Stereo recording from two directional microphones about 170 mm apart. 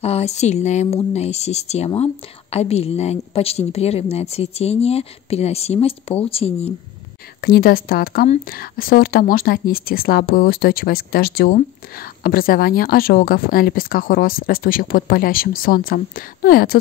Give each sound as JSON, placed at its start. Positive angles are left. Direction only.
{"t": 0.0, "sound": "a woman's voice", "side_deg": 40}
{"t": 7.4, "sound": "a woman's voice", "side_deg": 65}